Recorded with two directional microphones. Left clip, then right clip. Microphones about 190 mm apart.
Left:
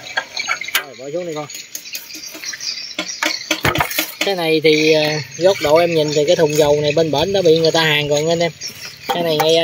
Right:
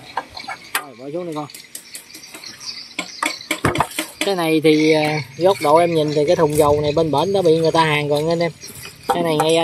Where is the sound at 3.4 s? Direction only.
40° left (ahead or behind).